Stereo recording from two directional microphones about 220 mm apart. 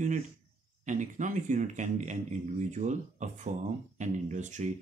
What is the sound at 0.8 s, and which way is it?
Speech, 35° right (ahead or behind).